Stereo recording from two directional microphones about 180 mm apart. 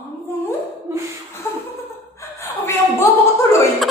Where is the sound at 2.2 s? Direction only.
15° left (ahead or behind).